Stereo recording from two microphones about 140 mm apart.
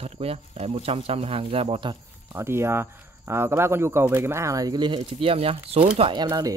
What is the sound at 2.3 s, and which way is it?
Speech, 20° right (ahead or behind).